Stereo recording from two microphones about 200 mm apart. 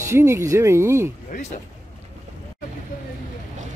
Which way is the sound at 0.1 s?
15° right (ahead or behind).